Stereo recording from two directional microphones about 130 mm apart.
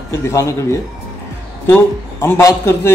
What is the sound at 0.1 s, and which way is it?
Speech, 25° left (ahead or behind).